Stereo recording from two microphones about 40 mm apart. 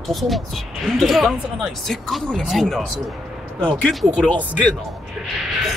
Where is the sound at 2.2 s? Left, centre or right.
Centre.